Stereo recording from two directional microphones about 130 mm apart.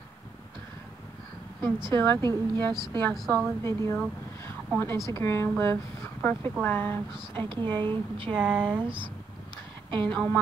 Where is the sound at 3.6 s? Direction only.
25° left (ahead or behind).